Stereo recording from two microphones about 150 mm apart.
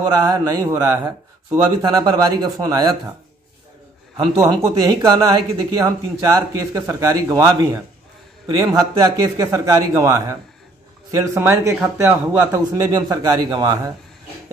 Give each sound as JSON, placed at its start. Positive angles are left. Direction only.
{"t": 0.0, "sound": "speech", "side_deg": -25}
{"t": 4.4, "sound": "speech", "side_deg": -30}
{"t": 12.8, "sound": "speech", "side_deg": -25}